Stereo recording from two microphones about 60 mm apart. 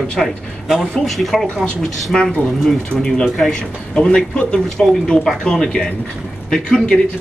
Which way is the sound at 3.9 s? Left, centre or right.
Centre.